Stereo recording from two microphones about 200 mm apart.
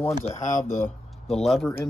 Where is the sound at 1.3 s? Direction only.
Centre (ahead or behind).